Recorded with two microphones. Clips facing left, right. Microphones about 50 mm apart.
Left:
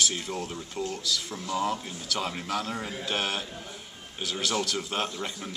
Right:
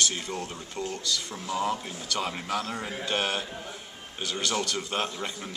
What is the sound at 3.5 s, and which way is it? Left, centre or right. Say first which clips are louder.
Speech: right 2 dB; centre.